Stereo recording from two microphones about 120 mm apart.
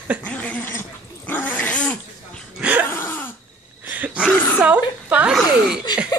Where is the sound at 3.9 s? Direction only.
10° right (ahead or behind).